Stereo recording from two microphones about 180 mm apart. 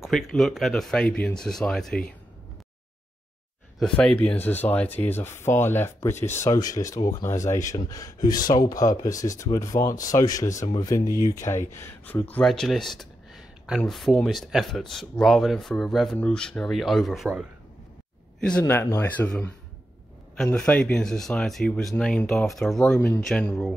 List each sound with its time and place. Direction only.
0.0 s speech: centre (ahead or behind)
3.8 s speech: 5° left (ahead or behind)
18.4 s speech: 10° left (ahead or behind)
20.5 s speech: 5° left (ahead or behind)
22.9 s speech: 15° left (ahead or behind)